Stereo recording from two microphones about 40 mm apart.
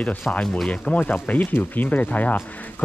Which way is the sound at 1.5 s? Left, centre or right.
Left.